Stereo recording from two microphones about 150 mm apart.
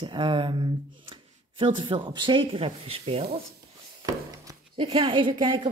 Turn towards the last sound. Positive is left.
turn(degrees=-35)  # may be behind; listen again after turning